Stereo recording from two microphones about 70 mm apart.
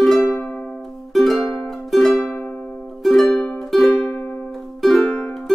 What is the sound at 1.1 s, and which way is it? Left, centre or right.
Music, centre.